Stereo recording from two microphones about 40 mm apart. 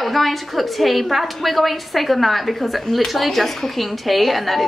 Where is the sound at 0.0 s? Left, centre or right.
Centre.